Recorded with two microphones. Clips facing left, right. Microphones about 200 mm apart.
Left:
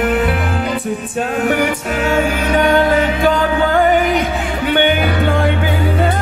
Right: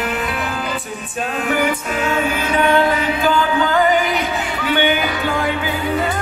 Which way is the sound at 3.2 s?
55° left (ahead or behind).